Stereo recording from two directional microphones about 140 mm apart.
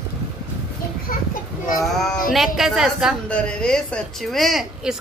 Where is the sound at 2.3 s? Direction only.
Centre (ahead or behind).